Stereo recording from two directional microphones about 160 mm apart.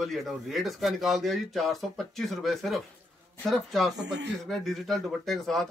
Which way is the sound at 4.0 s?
90° right.